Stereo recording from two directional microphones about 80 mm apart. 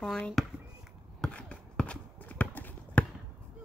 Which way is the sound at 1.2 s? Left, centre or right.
Centre.